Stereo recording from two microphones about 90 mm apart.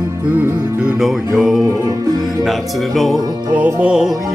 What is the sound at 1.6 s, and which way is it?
Music, 35° right (ahead or behind).